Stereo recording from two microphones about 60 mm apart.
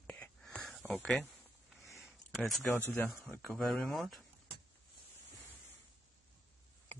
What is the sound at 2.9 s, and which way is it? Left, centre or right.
Speech, left.